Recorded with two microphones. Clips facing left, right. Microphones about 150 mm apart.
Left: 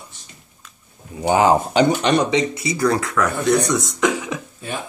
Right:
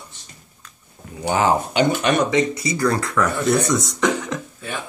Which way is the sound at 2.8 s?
10° left (ahead or behind).